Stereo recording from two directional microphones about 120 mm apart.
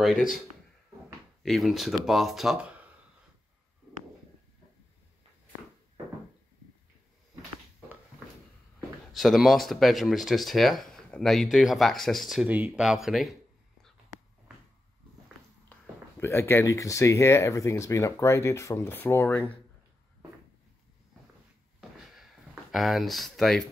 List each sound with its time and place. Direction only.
0.0 s speech: centre (ahead or behind)
1.4 s speech: centre (ahead or behind)
9.1 s speech: centre (ahead or behind)
12.4 s speech: 10° right (ahead or behind)
15.7 s speech: 20° left (ahead or behind)
21.9 s a sound: centre (ahead or behind)